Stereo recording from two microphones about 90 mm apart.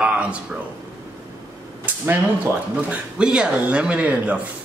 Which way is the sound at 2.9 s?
10° right (ahead or behind).